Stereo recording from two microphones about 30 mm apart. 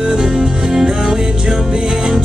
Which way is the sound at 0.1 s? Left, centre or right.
Right.